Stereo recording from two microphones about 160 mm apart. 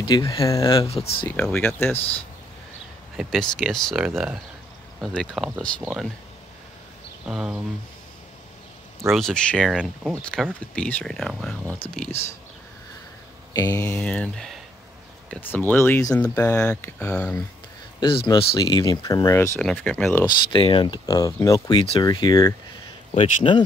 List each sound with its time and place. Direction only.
0.0 s speech: 25° left (ahead or behind)
1.2 s speech: 10° left (ahead or behind)
3.2 s speech: centre (ahead or behind)
7.2 s speech: 5° right (ahead or behind)
9.1 s speech: 5° left (ahead or behind)
9.8 s speech: 5° right (ahead or behind)
10.2 s speech: 5° left (ahead or behind)
13.5 s speech: 20° left (ahead or behind)
18.0 s speech: 30° left (ahead or behind); by 19.6 s 15° left (ahead or behind)
19.6 s speech: 5° left (ahead or behind)
20.2 s speech: 30° left (ahead or behind)